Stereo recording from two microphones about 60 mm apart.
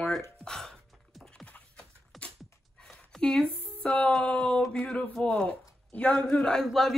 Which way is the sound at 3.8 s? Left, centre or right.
Centre.